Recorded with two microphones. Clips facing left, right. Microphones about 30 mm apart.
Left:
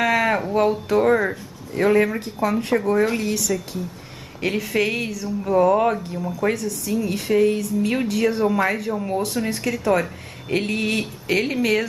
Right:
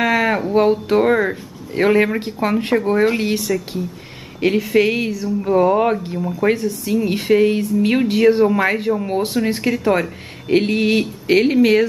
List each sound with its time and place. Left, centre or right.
0.0 s a sound: centre
0.5 s a woman's voice: right
4.5 s a woman's voice: centre; by 9.4 s right
9.5 s a woman's voice: right